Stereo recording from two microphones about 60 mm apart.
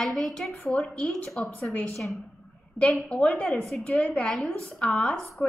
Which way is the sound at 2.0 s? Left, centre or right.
Centre.